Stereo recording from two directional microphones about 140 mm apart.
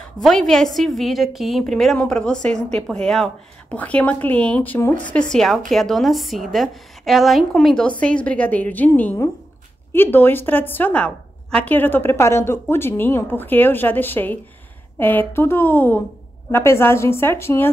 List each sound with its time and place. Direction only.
0.2 s a woman's voice: centre (ahead or behind)
5.1 s a woman's voice: 5° left (ahead or behind)